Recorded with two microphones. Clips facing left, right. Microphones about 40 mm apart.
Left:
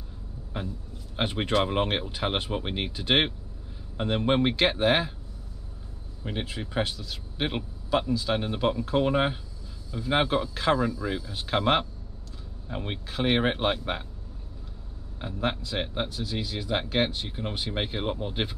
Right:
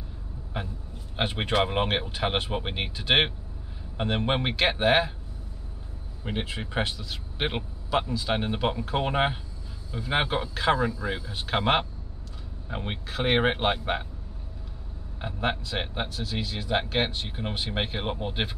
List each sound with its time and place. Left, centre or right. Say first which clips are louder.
1.1 s speech: even; centre
6.2 s a man's voice: right 1 dB; right
15.2 s speech: right 1 dB; right
16.2 s speech: even; centre
16.7 s speech: even; right